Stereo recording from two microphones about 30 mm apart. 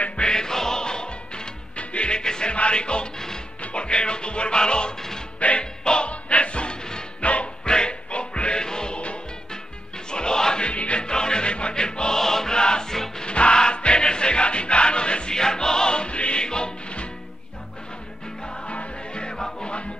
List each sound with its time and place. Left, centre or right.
0.2 s music: left
1.8 s music: left
2.5 s music: left
7.2 s music: left
7.6 s music: left
8.9 s music: left
10.1 s music: left
10.6 s music: left
11.1 s music: left
12.2 s music: centre; by 15.3 s left
15.3 s music: left
16.4 s music: left
18.7 s music: left
19.2 s music: left